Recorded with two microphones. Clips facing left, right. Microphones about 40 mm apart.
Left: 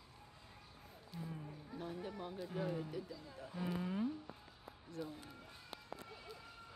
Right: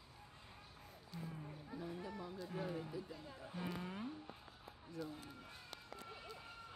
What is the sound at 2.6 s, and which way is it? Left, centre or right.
Speech, centre.